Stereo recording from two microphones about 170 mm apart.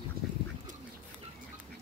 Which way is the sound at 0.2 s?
60° right (ahead or behind).